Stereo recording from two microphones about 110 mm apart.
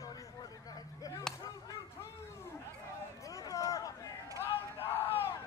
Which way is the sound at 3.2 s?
30° left (ahead or behind).